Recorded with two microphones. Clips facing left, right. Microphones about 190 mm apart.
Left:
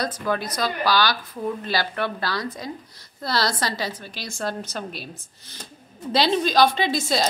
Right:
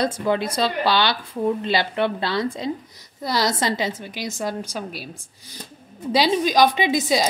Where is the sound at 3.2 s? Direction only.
15° right (ahead or behind).